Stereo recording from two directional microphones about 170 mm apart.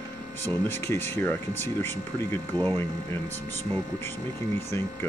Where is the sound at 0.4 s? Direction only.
15° left (ahead or behind).